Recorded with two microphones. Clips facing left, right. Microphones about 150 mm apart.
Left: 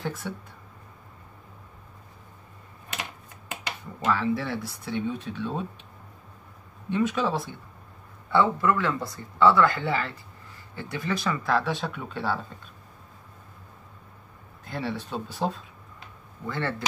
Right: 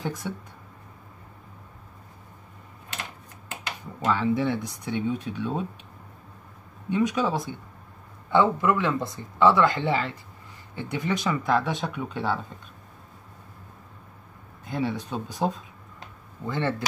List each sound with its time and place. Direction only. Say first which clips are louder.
0.0 s speech: right 1 dB; 15° right (ahead or behind)
4.0 s speech: right 2 dB; 20° right (ahead or behind)
6.9 s speech: right 1 dB; 15° right (ahead or behind)
14.7 s speech: right 3 dB; 15° right (ahead or behind)